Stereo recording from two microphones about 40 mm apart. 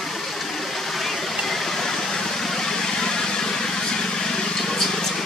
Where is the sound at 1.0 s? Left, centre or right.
Centre.